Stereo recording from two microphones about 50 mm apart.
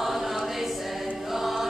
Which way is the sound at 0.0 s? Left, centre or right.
Centre.